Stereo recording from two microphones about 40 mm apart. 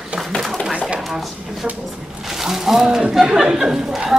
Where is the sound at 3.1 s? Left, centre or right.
Centre.